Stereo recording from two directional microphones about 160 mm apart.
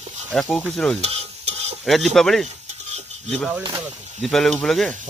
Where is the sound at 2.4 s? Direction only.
45° right (ahead or behind).